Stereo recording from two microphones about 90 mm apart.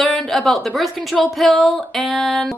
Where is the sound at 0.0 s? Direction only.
Centre (ahead or behind).